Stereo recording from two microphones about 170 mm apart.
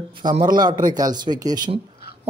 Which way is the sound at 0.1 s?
25° right (ahead or behind).